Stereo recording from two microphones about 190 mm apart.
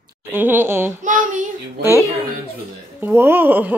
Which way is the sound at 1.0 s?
45° right (ahead or behind).